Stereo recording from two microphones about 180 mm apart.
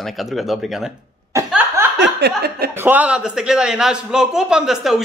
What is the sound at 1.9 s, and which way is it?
Speech, 70° right (ahead or behind).